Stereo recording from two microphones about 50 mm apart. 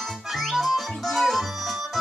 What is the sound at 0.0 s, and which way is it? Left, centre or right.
Music, centre.